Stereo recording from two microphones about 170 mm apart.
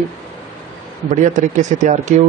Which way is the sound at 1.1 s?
45° right (ahead or behind).